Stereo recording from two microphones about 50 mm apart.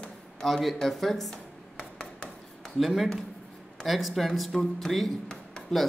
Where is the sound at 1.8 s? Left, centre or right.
Centre.